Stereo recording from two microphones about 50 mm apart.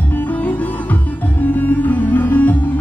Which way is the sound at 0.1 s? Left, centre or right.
Left.